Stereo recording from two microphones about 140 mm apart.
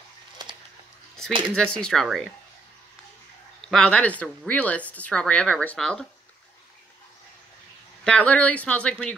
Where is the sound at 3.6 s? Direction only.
5° left (ahead or behind).